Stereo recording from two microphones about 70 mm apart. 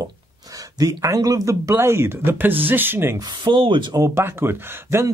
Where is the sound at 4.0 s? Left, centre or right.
Right.